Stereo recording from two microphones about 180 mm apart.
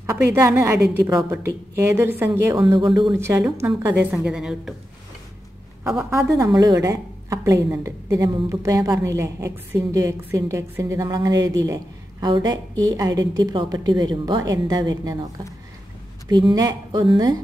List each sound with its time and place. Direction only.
0.0 s speech: 15° right (ahead or behind)
5.9 s a woman's voice: centre (ahead or behind)
6.6 s a woman's voice: 20° right (ahead or behind)
16.3 s a woman's voice: 20° right (ahead or behind)